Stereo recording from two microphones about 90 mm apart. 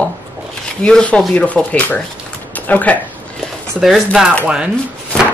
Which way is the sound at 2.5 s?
20° left (ahead or behind).